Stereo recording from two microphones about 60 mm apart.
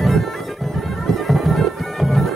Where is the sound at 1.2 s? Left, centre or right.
Centre.